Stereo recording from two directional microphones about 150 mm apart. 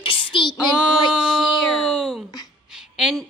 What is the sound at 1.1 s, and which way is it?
A woman's voice, centre (ahead or behind).